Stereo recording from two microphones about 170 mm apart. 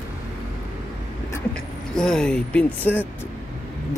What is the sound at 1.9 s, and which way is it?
Speech, 5° left (ahead or behind).